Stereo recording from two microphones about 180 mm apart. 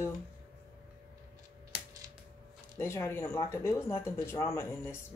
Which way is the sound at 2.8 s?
15° left (ahead or behind).